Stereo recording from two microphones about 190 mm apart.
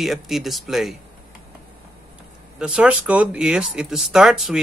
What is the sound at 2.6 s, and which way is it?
Speech, 5° right (ahead or behind).